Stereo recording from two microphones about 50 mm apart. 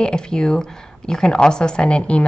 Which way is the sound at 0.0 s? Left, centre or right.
Centre.